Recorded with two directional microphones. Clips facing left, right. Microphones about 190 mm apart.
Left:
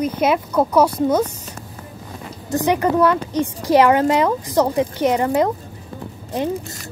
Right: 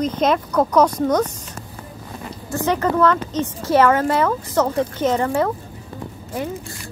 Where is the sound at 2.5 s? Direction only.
15° left (ahead or behind).